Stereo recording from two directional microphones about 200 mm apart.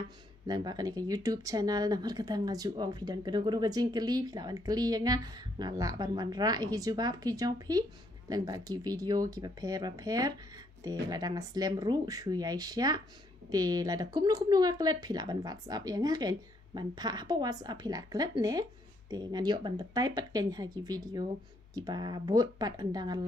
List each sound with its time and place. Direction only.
0.5 s speech: 20° right (ahead or behind)